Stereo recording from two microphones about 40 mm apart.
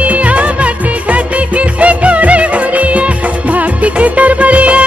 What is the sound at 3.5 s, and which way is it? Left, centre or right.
Music of bollywood, right.